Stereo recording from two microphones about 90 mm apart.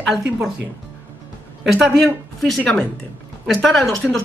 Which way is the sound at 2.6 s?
10° left (ahead or behind).